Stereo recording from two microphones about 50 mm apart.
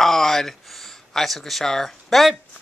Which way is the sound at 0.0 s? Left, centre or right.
Centre.